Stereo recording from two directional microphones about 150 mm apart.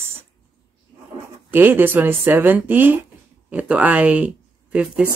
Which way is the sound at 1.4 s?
15° right (ahead or behind).